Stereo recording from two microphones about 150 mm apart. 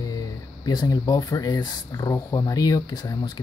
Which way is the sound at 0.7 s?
25° left (ahead or behind).